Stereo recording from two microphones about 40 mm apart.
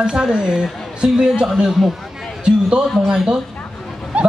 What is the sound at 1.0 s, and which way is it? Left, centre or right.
Speech, centre.